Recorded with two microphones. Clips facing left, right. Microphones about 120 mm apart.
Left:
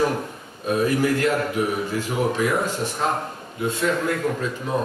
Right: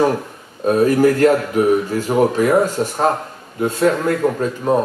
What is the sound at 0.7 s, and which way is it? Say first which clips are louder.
Speech: right 7 dB; 45° right (ahead or behind).